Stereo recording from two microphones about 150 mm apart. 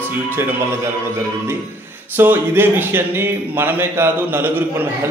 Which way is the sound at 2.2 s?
15° right (ahead or behind).